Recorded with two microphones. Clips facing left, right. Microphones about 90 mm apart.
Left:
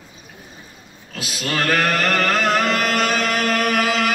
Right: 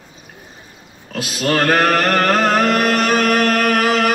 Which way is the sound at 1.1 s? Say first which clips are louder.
Right 6 dB; 50° right (ahead or behind).